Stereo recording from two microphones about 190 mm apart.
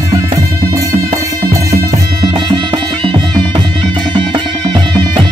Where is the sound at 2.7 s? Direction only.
25° right (ahead or behind).